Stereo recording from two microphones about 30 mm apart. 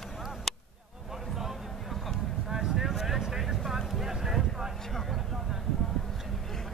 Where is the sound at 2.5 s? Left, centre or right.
Centre.